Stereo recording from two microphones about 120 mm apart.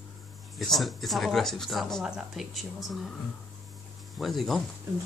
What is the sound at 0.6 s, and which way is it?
Speech, centre (ahead or behind).